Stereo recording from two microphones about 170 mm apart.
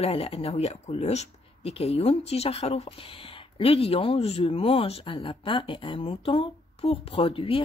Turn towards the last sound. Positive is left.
turn(degrees=30)  # may be behind; listen again after turning